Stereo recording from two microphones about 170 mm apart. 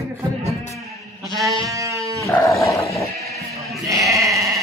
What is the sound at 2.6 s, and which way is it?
Dog, 20° left (ahead or behind).